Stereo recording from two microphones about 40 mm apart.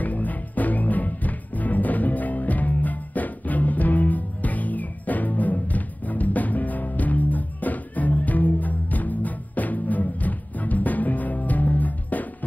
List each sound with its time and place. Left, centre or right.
0.0 s music: left